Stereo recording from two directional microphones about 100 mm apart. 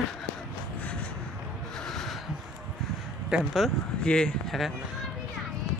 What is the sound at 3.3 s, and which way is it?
Speech, 5° right (ahead or behind).